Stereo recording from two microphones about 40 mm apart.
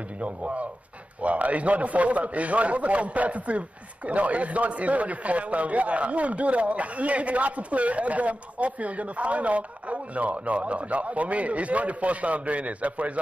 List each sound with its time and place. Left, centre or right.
0.2 s a man's voice: right